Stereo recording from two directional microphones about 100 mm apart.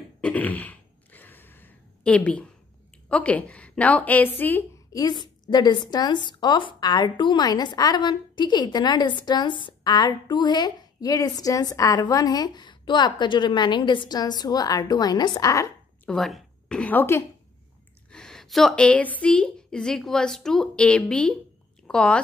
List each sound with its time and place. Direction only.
0.2 s a sound: 15° left (ahead or behind)
3.1 s a woman's voice: 15° left (ahead or behind)
4.9 s a woman's voice: 45° left (ahead or behind)
16.1 s a woman's voice: centre (ahead or behind); by 17.2 s 20° left (ahead or behind)
18.1 s a woman's voice: 5° left (ahead or behind)